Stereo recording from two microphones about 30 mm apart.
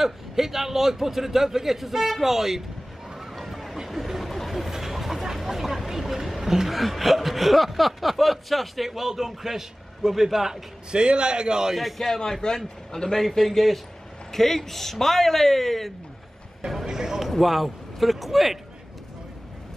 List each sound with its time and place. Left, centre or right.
0.0 s a man's voice: centre
3.1 s a sound: centre
6.7 s speech: centre
10.9 s a man's voice: right
12.3 s speech: left
13.5 s speech: centre
16.8 s a man's voice: centre
17.4 s speech: centre